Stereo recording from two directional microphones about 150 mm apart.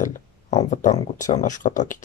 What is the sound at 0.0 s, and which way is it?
Speech, 50° left (ahead or behind).